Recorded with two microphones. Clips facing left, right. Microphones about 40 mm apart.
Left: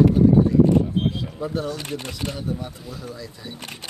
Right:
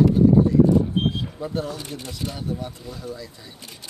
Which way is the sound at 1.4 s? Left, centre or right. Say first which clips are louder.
Left 2 dB; centre.